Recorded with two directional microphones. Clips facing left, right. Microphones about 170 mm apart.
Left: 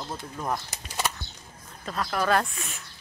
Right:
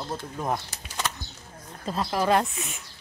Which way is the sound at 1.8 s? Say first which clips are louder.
Right 2 dB; 25° right (ahead or behind).